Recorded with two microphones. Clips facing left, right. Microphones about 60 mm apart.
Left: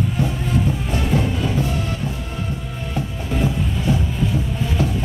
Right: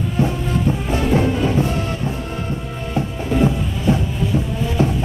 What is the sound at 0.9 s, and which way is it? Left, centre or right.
Music, right.